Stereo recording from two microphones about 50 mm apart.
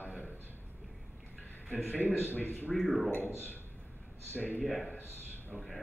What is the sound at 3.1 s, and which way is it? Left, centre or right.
A man's voice, left.